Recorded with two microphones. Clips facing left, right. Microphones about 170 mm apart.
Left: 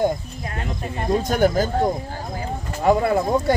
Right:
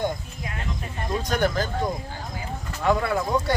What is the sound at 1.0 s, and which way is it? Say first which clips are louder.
Speech: left 6 dB; 45° left (ahead or behind).